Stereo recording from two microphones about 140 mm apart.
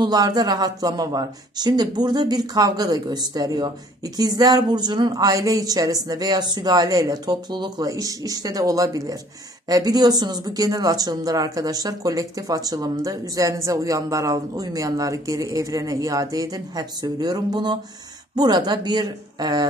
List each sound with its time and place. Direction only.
0.0 s speech: 30° right (ahead or behind)